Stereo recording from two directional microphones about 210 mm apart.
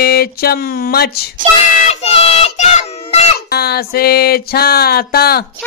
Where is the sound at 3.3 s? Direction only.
50° left (ahead or behind).